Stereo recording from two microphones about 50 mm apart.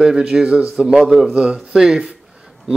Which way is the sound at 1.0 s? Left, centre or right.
Centre.